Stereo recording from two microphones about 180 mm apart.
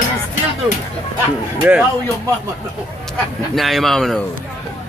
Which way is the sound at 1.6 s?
10° right (ahead or behind).